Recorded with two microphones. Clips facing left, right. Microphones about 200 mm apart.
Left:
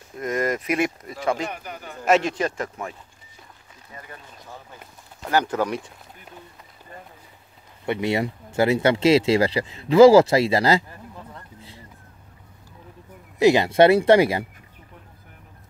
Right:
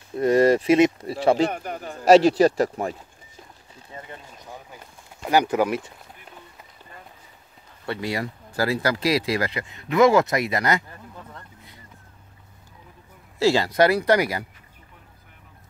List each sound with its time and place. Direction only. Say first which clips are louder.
0.1 s speech: right 8 dB; 30° right (ahead or behind)
1.5 s speech: right 4 dB; 45° right (ahead or behind)
3.9 s a sound: right 2 dB; 25° right (ahead or behind)
5.3 s speech: right 2 dB; 10° right (ahead or behind)
7.8 s speech: left 5 dB; 20° left (ahead or behind)
13.4 s speech: left 3 dB; 20° left (ahead or behind)